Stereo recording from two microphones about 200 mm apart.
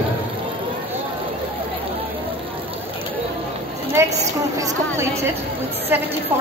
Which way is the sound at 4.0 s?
15° right (ahead or behind).